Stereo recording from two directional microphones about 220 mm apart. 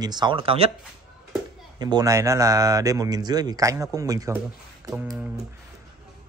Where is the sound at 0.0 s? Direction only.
20° right (ahead or behind).